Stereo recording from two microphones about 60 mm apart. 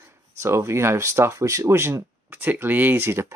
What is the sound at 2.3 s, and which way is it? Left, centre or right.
Speech, right.